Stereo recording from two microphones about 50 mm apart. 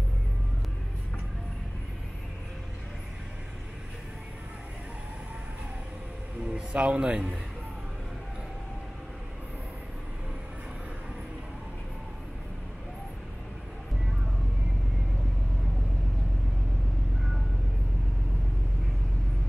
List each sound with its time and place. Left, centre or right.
6.4 s speech: right